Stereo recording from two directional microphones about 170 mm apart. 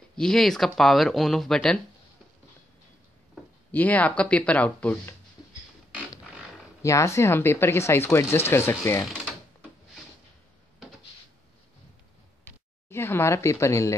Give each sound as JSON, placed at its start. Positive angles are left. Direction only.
{"t": 0.1, "sound": "speech", "side_deg": 5}
{"t": 3.7, "sound": "speech", "side_deg": 10}
{"t": 6.8, "sound": "speech", "side_deg": 15}
{"t": 9.0, "sound": "a sound", "side_deg": -5}
{"t": 12.4, "sound": "speech", "side_deg": 15}